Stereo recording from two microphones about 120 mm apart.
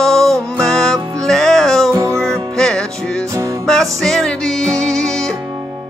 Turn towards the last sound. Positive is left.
turn(degrees=5)  # may be behind; listen again after turning